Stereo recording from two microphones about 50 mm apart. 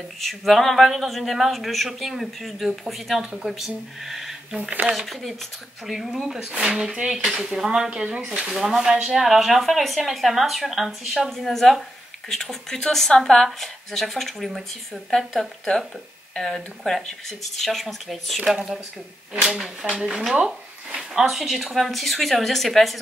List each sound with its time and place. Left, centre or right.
0.2 s speech: centre
9.2 s speech: centre
18.4 s speech: centre
19.8 s speech: centre
20.3 s a sound: right
21.1 s speech: centre